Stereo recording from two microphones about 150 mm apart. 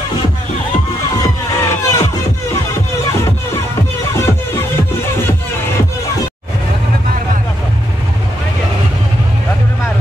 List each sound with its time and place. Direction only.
1.1 s music: 20° left (ahead or behind)
4.1 s music: 20° left (ahead or behind)